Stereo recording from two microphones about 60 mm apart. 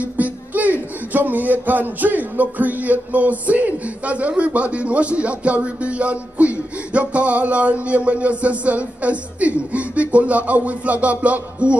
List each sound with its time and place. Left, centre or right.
0.0 s speech: right